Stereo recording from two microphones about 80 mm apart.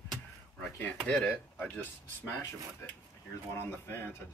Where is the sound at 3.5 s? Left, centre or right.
Left.